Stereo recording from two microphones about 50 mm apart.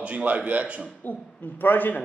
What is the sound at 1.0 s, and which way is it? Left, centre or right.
Speech, left.